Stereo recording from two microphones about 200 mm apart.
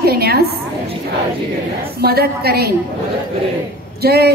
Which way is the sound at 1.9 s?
50° right (ahead or behind).